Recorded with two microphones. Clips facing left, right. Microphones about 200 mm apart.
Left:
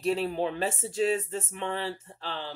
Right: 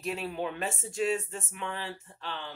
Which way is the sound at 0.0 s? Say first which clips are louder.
Left 6 dB; 35° left (ahead or behind).